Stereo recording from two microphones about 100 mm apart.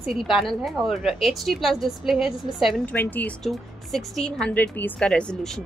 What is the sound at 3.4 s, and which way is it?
A woman's voice, centre (ahead or behind).